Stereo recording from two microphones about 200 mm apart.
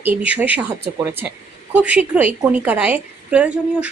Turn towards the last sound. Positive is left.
turn(degrees=-5)  # may be behind; listen again after turning